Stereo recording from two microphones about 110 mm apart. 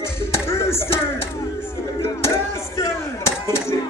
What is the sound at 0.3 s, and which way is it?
Music, 25° left (ahead or behind).